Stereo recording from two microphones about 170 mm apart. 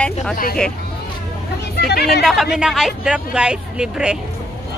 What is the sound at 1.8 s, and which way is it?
Speech, 70° left (ahead or behind).